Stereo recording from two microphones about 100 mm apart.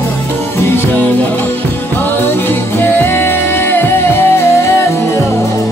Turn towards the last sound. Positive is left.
turn(degrees=25)  # may be behind; listen again after turning